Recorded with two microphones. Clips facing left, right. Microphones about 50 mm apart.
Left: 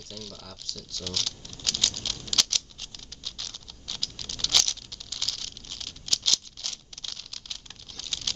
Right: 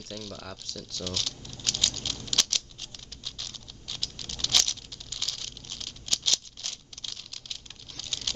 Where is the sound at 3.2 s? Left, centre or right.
Centre.